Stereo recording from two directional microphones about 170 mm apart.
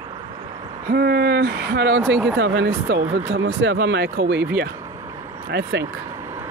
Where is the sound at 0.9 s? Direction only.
70° right (ahead or behind); by 4.5 s 90° right.